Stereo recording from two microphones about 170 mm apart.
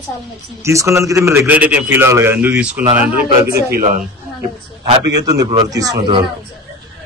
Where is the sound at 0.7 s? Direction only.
15° right (ahead or behind).